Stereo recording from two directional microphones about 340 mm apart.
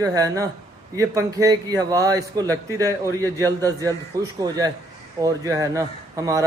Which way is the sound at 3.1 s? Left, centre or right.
Centre.